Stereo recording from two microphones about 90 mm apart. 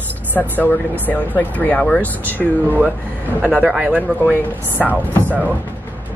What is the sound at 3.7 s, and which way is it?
Speech, 15° right (ahead or behind).